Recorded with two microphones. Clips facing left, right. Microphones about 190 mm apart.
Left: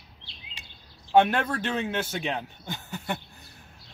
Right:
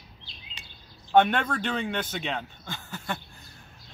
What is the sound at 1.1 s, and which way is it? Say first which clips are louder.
Speech: even; 5° left (ahead or behind).